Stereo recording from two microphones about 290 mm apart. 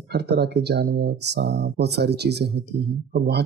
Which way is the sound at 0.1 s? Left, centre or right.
Right.